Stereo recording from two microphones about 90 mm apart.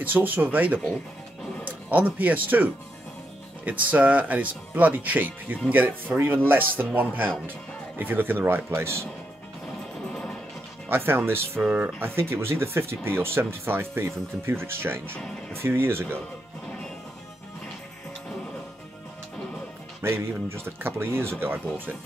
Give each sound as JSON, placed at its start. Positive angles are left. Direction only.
{"t": 0.0, "sound": "speech", "side_deg": -20}
{"t": 10.9, "sound": "speech", "side_deg": -25}
{"t": 20.0, "sound": "speech", "side_deg": -30}